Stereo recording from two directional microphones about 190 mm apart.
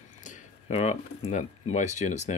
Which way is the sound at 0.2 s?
40° left (ahead or behind).